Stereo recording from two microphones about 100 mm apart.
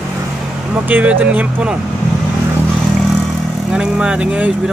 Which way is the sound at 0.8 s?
15° right (ahead or behind).